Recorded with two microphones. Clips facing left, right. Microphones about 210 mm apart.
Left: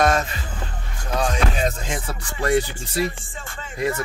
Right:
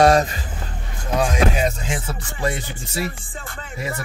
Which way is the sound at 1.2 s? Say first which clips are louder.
Right 3 dB; 10° right (ahead or behind).